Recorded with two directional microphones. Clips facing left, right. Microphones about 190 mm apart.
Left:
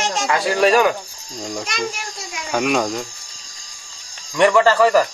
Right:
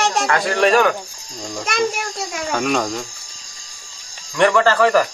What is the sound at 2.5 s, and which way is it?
Speech, 5° left (ahead or behind).